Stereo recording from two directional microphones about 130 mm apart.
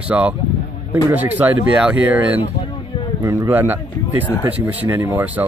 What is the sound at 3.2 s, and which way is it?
A man's voice, 20° right (ahead or behind).